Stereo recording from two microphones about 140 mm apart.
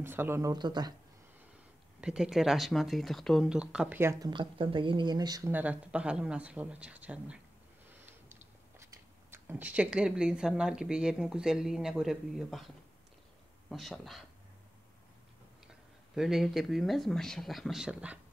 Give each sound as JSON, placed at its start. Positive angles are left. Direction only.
{"t": 0.0, "sound": "speech", "side_deg": -15}
{"t": 0.5, "sound": "speech", "side_deg": -30}
{"t": 2.0, "sound": "speech", "side_deg": -5}
{"t": 4.0, "sound": "speech", "side_deg": -20}
{"t": 4.3, "sound": "speech", "side_deg": -35}
{"t": 5.5, "sound": "speech", "side_deg": -10}
{"t": 7.9, "sound": "a sound", "side_deg": -15}
{"t": 9.3, "sound": "speech", "side_deg": -15}
{"t": 16.2, "sound": "speech", "side_deg": 0}